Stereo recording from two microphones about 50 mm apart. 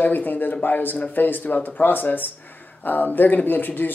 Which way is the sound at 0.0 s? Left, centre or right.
Left.